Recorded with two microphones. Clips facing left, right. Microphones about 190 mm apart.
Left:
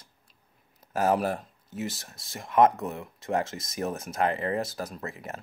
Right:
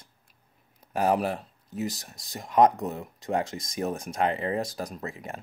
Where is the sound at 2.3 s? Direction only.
20° right (ahead or behind).